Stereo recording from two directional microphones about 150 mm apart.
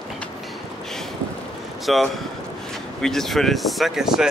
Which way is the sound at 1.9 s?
Centre (ahead or behind).